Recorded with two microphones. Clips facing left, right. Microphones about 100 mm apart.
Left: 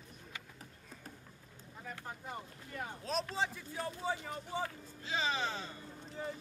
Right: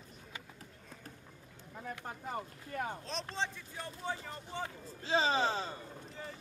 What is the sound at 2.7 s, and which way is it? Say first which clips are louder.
Speech: right 5 dB; 50° right (ahead or behind).